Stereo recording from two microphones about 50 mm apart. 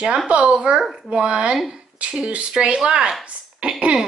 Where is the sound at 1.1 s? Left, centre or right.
Centre.